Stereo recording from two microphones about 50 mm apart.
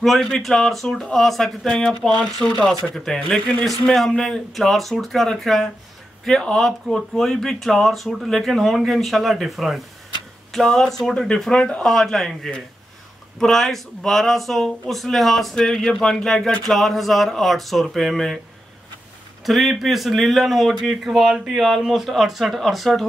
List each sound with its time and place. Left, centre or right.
0.2 s speech: centre
2.1 s speech: left
2.7 s speech: centre
3.3 s speech: left
3.9 s speech: centre
11.5 s speech: left
11.8 s speech: centre
13.4 s speech: centre
19.4 s speech: centre